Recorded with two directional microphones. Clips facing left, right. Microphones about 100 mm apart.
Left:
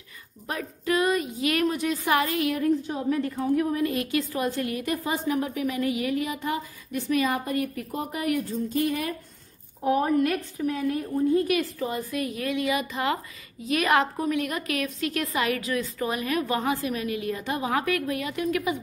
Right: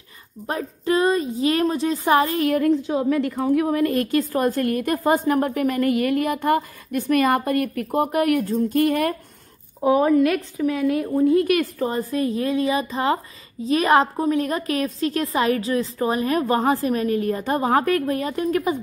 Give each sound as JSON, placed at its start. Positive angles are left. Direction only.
{"t": 0.5, "sound": "a woman's voice", "side_deg": -30}
{"t": 2.5, "sound": "a woman's voice", "side_deg": -85}
{"t": 9.9, "sound": "speech", "side_deg": -90}
{"t": 11.8, "sound": "a woman's voice", "side_deg": -35}